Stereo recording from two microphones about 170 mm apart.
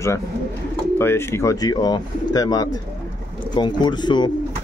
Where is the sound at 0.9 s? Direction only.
15° left (ahead or behind).